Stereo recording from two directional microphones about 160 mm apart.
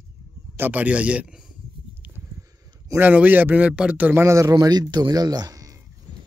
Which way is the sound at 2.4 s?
15° right (ahead or behind).